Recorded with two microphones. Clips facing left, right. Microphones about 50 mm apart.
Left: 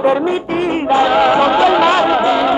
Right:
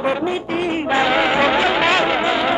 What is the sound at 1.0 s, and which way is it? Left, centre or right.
Music, centre.